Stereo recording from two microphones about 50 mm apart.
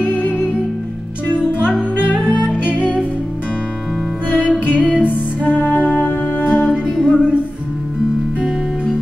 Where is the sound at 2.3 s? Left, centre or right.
Right.